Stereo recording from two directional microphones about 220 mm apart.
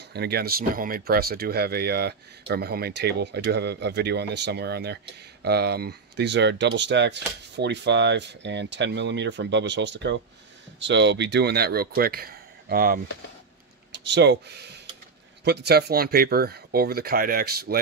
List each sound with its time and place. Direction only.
0.1 s speech: 45° right (ahead or behind)
13.9 s speech: 55° right (ahead or behind)